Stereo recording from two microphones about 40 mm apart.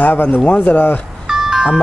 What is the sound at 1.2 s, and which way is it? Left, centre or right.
Music, centre.